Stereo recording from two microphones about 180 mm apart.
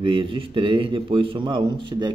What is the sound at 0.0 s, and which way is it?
A man's voice, 25° right (ahead or behind).